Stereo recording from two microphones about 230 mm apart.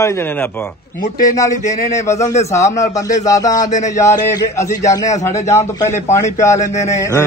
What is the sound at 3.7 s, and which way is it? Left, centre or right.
Music, left.